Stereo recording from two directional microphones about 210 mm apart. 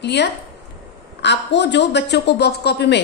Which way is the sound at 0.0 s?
55° left (ahead or behind).